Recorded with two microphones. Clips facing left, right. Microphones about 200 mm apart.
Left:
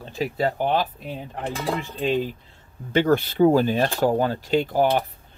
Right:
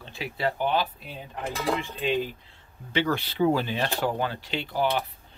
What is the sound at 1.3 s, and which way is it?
Speech, 30° left (ahead or behind).